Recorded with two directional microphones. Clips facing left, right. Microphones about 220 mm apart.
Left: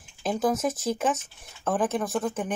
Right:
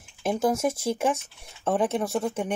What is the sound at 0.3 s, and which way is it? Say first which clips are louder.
Speech: right 1 dB; 10° right (ahead or behind).